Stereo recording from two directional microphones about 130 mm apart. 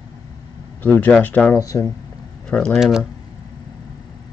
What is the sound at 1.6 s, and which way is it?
Speech, 25° left (ahead or behind).